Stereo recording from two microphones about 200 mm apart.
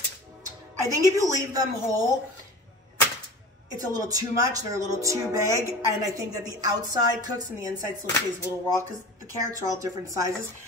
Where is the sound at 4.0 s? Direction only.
15° right (ahead or behind).